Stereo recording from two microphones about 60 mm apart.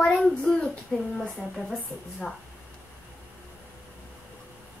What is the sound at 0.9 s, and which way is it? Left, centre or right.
Speech, centre.